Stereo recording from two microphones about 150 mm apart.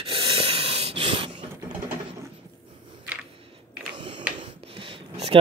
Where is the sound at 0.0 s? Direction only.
40° right (ahead or behind).